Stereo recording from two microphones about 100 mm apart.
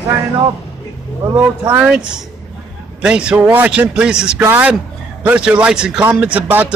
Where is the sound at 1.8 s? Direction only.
10° right (ahead or behind).